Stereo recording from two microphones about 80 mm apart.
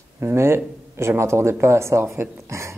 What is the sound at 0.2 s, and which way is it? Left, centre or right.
Speech, right.